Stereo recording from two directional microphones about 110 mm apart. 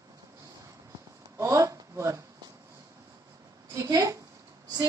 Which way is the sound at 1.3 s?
30° right (ahead or behind).